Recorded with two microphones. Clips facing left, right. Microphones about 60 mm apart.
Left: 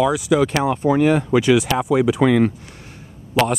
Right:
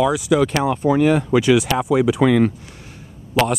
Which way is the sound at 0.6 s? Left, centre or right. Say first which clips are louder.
Even; left.